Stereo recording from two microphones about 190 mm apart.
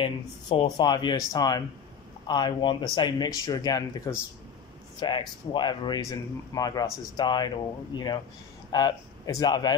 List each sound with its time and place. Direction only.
0.0 s speech: 25° left (ahead or behind)